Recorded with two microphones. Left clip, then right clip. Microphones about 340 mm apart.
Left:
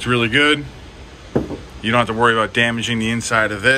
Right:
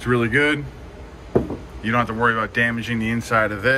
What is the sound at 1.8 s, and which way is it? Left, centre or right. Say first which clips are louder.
Speech: left 4 dB; centre.